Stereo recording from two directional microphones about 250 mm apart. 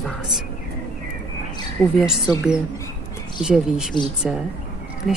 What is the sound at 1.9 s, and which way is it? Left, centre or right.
Speech, centre.